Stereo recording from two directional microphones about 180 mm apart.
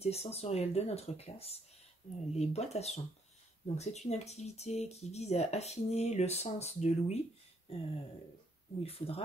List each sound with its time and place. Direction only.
0.0 s speech: 35° left (ahead or behind)
7.7 s a sound: 30° left (ahead or behind)
8.8 s speech: 35° left (ahead or behind)